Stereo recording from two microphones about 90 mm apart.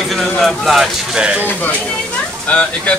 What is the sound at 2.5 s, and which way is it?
Speech, 15° left (ahead or behind).